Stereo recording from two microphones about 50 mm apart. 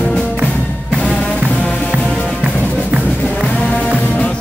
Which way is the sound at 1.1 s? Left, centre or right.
Left.